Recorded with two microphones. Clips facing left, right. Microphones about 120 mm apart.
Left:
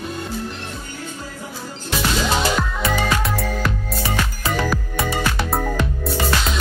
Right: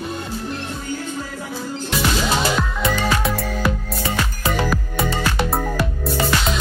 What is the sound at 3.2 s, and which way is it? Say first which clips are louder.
Music: right 1 dB; centre (ahead or behind).